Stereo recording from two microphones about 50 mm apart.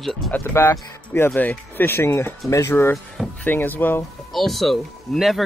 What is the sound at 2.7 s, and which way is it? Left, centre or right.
Speech, left.